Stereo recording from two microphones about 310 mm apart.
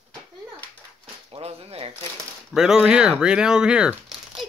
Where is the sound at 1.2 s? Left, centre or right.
Centre.